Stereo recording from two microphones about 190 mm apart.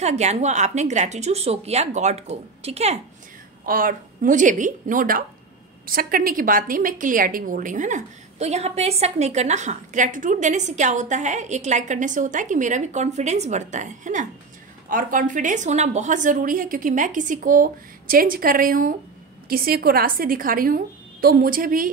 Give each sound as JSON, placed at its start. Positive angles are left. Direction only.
{"t": 0.0, "sound": "a woman's voice", "side_deg": -35}
{"t": 3.6, "sound": "a woman's voice", "side_deg": -50}